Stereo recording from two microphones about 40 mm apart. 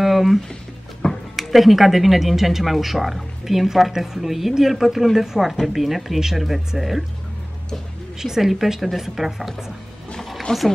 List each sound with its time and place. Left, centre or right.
0.0 s a sound: centre
1.3 s a woman's voice: centre
8.2 s a woman's voice: centre
10.5 s speech: centre